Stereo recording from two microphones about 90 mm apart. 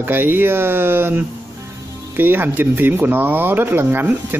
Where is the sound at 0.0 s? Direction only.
20° right (ahead or behind).